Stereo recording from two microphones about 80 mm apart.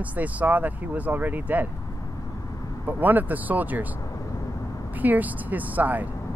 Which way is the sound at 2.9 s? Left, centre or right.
Right.